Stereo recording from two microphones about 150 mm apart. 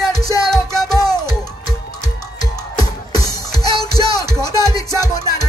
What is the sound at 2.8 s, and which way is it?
Music, 25° left (ahead or behind).